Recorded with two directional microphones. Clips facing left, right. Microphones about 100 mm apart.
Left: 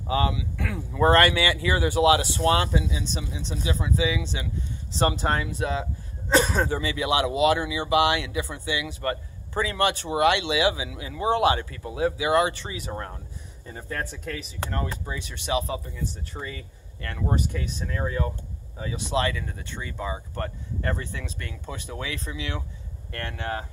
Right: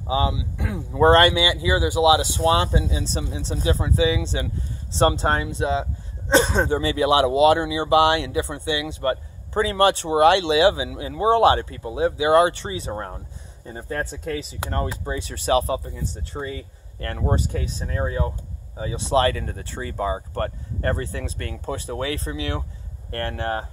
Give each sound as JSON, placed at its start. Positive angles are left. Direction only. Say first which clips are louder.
{"t": 0.0, "sound": "speech", "louder": "right 2 dB", "side_deg": -20}